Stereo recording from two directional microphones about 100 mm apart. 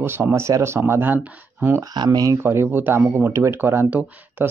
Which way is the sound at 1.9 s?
45° right (ahead or behind).